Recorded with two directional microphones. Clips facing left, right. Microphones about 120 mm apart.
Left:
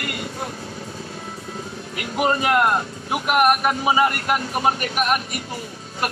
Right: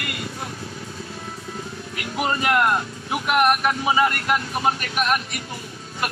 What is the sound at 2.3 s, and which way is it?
Speech, 20° left (ahead or behind).